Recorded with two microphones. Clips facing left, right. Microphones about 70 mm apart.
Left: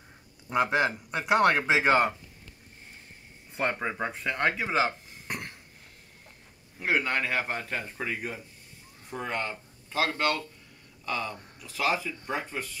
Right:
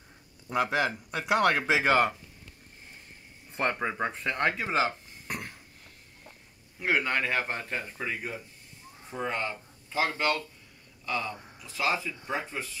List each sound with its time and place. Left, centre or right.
0.5 s speech: left
3.5 s speech: centre
4.4 s speech: centre
5.3 s cough: centre
6.8 s a man's voice: centre
9.0 s speech: centre